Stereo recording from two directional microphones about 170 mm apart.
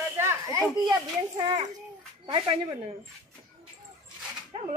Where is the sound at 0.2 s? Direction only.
20° right (ahead or behind).